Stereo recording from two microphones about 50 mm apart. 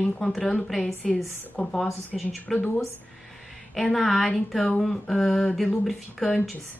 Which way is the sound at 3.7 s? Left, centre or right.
Centre.